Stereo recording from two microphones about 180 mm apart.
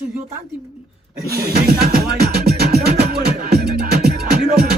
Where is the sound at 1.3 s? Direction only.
60° right (ahead or behind).